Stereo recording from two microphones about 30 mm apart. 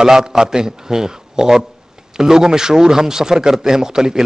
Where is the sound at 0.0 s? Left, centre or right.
Centre.